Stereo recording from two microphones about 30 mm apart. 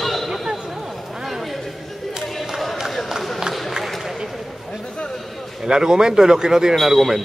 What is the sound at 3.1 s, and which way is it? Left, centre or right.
Run, centre.